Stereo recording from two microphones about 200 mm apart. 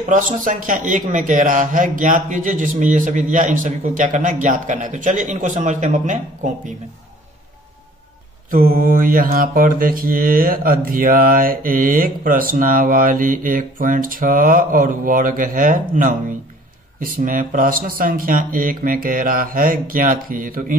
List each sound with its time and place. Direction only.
0.1 s a man's voice: 40° right (ahead or behind)
8.5 s mantra: 45° right (ahead or behind)